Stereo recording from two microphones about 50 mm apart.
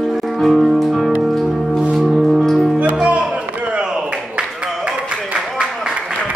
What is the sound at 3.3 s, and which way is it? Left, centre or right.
Chop, right.